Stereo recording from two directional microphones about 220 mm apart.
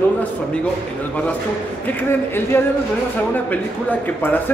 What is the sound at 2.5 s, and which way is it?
Speech, 10° left (ahead or behind).